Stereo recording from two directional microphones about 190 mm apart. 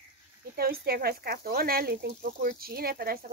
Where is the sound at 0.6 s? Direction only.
55° right (ahead or behind).